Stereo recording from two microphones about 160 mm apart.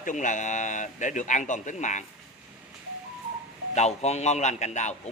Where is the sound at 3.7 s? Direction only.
45° left (ahead or behind).